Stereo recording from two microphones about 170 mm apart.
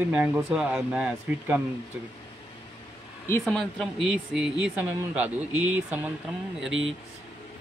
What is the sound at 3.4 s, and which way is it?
Speech, 5° left (ahead or behind).